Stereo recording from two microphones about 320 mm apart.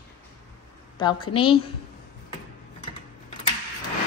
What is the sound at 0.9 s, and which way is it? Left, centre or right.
Speech, centre.